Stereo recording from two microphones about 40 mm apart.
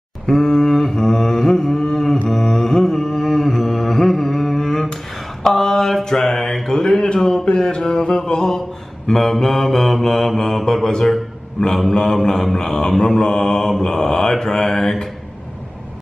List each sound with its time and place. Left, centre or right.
0.3 s a sound: centre
5.4 s mantra: centre
11.9 s mantra: centre